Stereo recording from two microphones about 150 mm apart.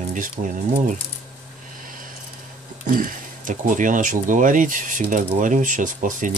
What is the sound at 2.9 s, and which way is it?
Speech, 65° right (ahead or behind).